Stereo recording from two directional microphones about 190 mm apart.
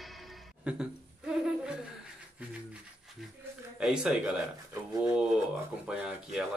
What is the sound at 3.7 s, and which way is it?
Speech, 5° right (ahead or behind).